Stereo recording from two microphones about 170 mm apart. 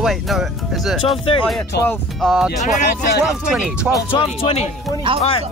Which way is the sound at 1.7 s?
75° left (ahead or behind).